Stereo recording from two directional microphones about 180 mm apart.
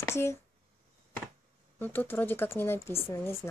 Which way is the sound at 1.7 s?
10° left (ahead or behind).